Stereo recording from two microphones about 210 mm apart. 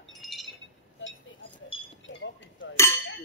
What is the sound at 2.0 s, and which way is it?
Chink, 60° left (ahead or behind).